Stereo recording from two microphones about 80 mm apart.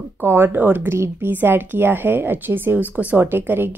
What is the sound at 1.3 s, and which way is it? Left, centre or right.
A woman's voice, right.